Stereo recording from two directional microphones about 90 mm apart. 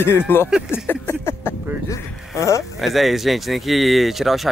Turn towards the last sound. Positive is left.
turn(degrees=0)  # may be behind; listen again after turning